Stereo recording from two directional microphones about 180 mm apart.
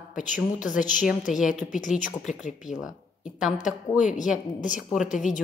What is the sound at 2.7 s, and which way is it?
Speech, centre (ahead or behind).